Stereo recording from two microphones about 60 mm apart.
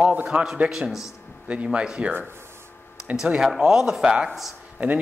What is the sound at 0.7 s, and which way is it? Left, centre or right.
Speech, centre.